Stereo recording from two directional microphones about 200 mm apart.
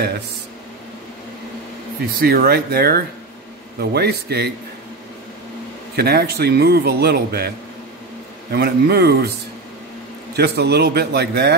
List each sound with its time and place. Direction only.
2.1 s a man's voice: 50° right (ahead or behind)
5.9 s a man's voice: 50° right (ahead or behind)
10.3 s a man's voice: 55° right (ahead or behind)